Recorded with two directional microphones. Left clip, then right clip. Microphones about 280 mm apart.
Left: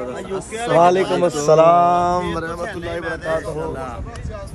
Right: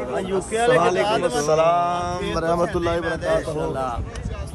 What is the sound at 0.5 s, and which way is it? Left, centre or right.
Speech, right.